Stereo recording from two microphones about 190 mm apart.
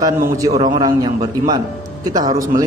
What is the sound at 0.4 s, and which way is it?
A man's voice, 20° right (ahead or behind).